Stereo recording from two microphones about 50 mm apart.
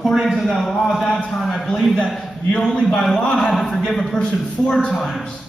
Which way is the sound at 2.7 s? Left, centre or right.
Centre.